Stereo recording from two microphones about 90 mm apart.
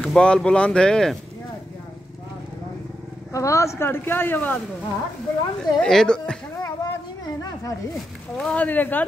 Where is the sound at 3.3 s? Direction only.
35° left (ahead or behind); by 4.6 s 20° left (ahead or behind).